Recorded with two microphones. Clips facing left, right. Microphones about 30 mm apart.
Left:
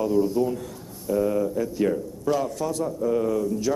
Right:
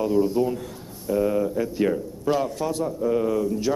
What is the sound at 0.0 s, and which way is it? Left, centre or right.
Speech, right.